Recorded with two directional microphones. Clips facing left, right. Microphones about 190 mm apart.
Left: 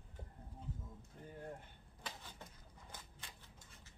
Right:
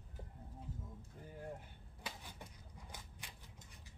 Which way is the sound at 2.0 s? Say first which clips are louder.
Right 1 dB; 15° right (ahead or behind).